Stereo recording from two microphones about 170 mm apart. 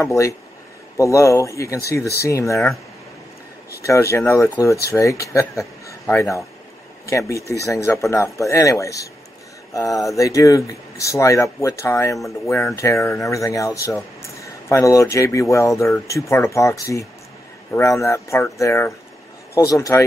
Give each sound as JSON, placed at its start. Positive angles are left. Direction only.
{"t": 0.0, "sound": "speech", "side_deg": 15}
{"t": 3.8, "sound": "a man's voice", "side_deg": 15}